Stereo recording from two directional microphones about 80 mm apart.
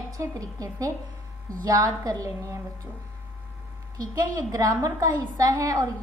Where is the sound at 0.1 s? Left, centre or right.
Right.